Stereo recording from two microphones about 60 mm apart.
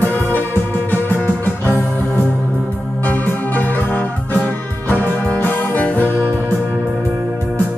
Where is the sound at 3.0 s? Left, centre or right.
Left.